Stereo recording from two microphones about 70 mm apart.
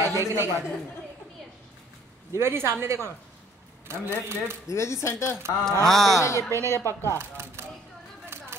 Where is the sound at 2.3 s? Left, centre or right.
Right.